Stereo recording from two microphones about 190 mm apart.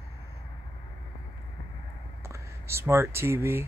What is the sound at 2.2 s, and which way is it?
Speech, 15° right (ahead or behind).